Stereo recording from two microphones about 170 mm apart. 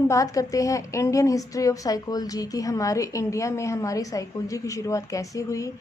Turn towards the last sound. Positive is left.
turn(degrees=20)  # may be behind; listen again after turning